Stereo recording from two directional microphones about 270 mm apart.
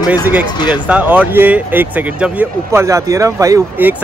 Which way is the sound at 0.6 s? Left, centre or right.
Centre.